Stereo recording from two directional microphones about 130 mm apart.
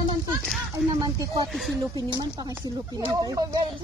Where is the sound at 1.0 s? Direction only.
30° right (ahead or behind).